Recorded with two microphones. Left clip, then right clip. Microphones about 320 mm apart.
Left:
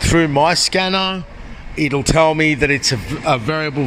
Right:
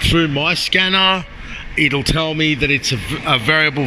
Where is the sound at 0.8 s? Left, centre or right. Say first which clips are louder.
Right 4 dB; centre.